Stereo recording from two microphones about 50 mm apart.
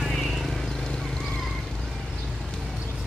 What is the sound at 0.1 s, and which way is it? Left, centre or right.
Vehicle, centre.